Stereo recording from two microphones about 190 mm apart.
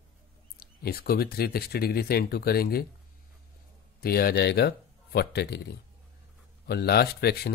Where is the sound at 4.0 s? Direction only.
55° left (ahead or behind).